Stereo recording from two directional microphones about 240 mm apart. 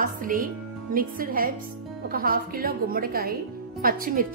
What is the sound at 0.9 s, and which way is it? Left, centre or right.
Speech, right.